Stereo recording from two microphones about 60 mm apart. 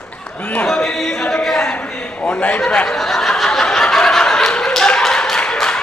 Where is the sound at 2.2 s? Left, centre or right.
Left.